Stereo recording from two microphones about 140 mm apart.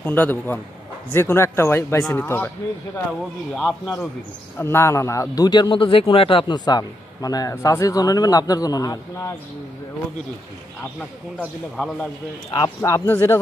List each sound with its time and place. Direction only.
0.0 s a man's voice: 15° left (ahead or behind)
3.1 s a man's voice: 5° left (ahead or behind)
4.6 s a man's voice: 15° left (ahead or behind)
11.3 s a man's voice: 5° left (ahead or behind)
12.5 s a man's voice: 20° left (ahead or behind)